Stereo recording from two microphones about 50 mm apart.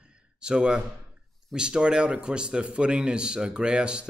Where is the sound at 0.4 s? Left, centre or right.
Centre.